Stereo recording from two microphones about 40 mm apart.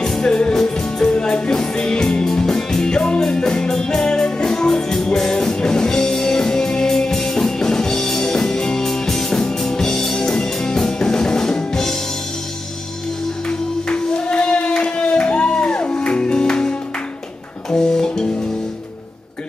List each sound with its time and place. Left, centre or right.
0.0 s music: centre
13.5 s music: left